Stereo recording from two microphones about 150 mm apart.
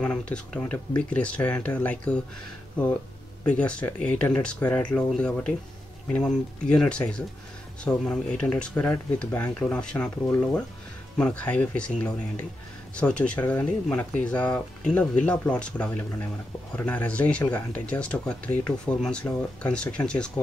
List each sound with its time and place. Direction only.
0.0 s speech: 5° left (ahead or behind)
3.4 s speech: 10° left (ahead or behind)
10.0 s speech: 20° left (ahead or behind)
11.1 s speech: 10° left (ahead or behind)